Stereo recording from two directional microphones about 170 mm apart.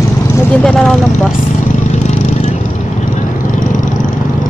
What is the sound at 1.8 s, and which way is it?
Vehicle, 45° left (ahead or behind).